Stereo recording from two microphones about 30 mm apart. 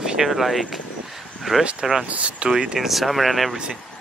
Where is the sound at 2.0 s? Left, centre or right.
Right.